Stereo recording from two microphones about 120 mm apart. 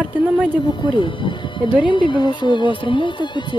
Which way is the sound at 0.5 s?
40° left (ahead or behind).